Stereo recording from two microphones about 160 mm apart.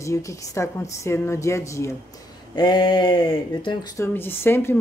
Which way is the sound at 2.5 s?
30° left (ahead or behind).